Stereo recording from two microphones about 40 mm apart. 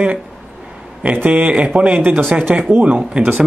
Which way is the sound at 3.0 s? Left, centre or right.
Right.